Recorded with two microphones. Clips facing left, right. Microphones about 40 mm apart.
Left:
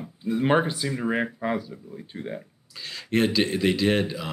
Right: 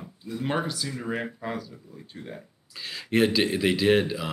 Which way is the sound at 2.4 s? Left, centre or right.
Centre.